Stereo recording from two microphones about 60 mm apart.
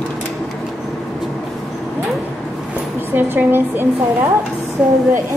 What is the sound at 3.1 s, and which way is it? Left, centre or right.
Speech, right.